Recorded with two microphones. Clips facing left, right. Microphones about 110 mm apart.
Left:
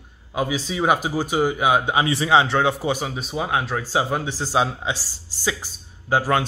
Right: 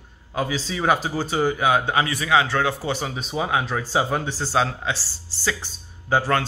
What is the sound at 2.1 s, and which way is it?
Speech, 25° left (ahead or behind).